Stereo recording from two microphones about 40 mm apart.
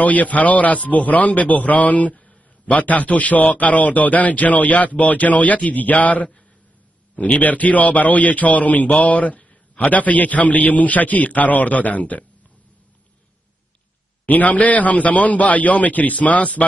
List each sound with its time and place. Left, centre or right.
0.0 s a man's voice: left
14.2 s a man's voice: left